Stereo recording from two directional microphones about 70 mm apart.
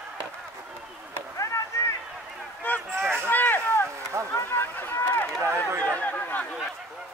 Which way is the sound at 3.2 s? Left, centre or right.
Left.